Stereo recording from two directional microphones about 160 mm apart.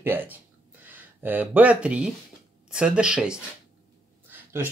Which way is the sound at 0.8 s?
10° right (ahead or behind).